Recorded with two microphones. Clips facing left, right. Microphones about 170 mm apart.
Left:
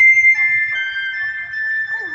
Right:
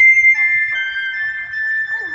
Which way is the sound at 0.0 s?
55° right (ahead or behind).